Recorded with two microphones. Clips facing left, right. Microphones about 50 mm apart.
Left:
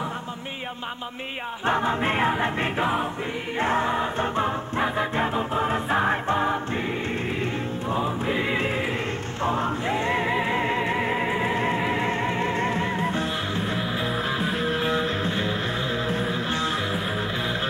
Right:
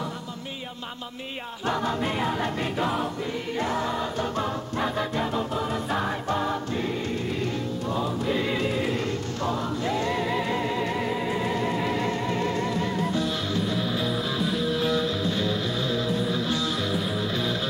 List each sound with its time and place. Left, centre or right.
1.7 s choir: left
3.5 s music: left
7.9 s music: left